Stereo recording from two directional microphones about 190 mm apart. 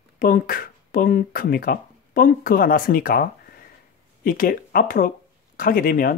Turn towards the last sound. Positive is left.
turn(degrees=50)  # may be behind; listen again after turning